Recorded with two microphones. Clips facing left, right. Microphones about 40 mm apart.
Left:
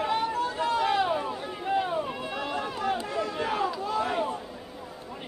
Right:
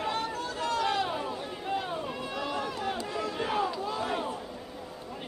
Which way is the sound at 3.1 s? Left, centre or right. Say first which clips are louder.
Left 2 dB; centre.